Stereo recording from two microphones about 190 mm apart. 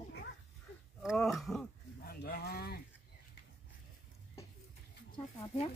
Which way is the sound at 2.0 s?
50° left (ahead or behind).